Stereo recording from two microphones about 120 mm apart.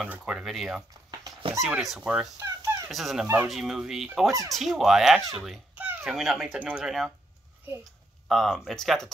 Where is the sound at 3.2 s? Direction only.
20° right (ahead or behind).